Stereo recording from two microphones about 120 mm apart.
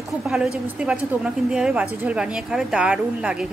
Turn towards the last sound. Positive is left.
turn(degrees=-5)  # may be behind; listen again after turning